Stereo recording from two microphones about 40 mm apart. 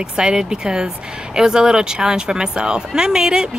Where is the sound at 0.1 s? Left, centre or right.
Centre.